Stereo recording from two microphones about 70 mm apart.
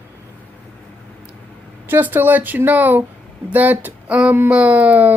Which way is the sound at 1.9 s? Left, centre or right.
Right.